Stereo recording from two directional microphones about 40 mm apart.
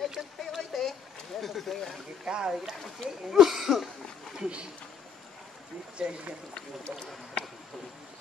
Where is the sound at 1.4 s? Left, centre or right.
Centre.